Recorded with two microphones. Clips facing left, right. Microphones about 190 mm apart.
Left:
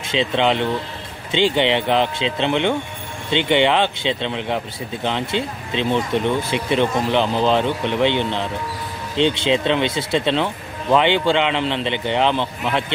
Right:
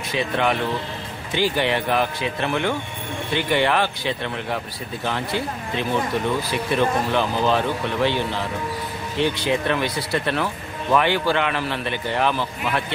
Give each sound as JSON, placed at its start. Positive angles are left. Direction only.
{"t": 0.1, "sound": "speech", "side_deg": 20}